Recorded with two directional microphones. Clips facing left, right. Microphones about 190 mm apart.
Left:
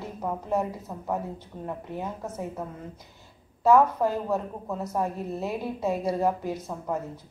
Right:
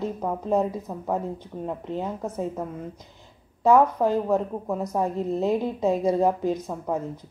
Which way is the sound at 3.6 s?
15° right (ahead or behind).